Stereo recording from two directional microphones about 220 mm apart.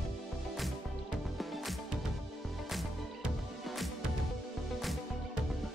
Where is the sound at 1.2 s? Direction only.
Centre (ahead or behind).